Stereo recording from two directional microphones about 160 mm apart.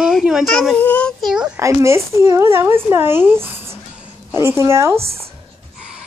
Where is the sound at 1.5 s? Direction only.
15° right (ahead or behind).